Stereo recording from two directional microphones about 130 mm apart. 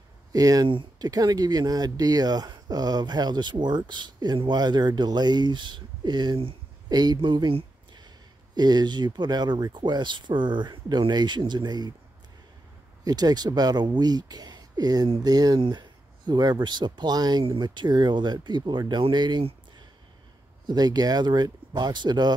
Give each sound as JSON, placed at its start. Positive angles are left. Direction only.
{"t": 0.3, "sound": "speech", "side_deg": -30}
{"t": 13.0, "sound": "speech", "side_deg": -30}
{"t": 20.6, "sound": "speech", "side_deg": -30}